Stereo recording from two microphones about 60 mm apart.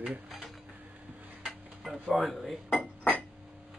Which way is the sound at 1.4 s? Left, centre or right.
Centre.